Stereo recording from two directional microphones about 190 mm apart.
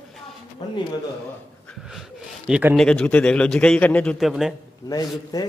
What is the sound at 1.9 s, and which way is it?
A man's voice, centre (ahead or behind).